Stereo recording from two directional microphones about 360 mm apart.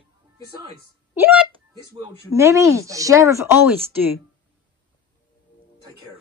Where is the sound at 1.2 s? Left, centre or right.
Centre.